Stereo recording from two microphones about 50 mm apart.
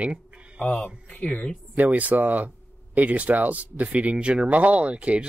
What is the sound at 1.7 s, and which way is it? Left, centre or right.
Speech, right.